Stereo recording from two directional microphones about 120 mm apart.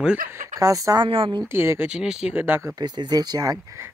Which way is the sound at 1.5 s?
20° right (ahead or behind).